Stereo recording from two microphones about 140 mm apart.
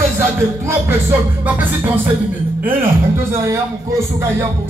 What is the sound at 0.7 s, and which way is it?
Speech, 15° right (ahead or behind).